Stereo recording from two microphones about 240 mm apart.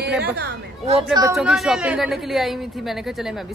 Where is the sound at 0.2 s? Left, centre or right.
Right.